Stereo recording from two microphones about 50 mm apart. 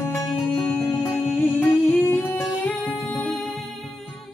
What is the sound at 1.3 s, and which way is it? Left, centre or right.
Music, left.